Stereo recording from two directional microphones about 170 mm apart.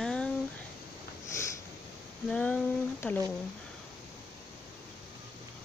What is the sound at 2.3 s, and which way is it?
Speech, 10° left (ahead or behind).